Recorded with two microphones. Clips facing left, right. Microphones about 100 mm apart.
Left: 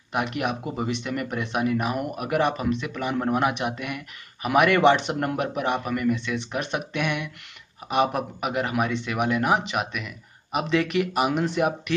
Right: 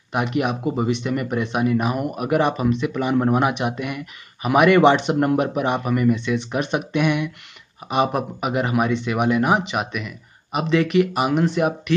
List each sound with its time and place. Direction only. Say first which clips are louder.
0.1 s speech: right 4 dB; 5° right (ahead or behind)